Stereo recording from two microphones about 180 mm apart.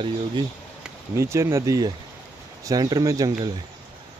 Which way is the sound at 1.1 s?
15° right (ahead or behind).